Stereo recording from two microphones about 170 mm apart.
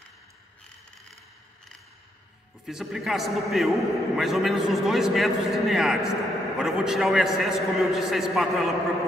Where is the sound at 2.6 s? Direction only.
Centre (ahead or behind).